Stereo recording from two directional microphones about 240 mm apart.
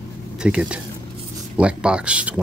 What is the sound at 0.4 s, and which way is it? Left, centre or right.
Speech, centre.